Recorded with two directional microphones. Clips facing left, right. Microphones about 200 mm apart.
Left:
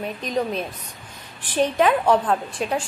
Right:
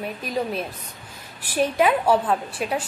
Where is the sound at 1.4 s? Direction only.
10° right (ahead or behind).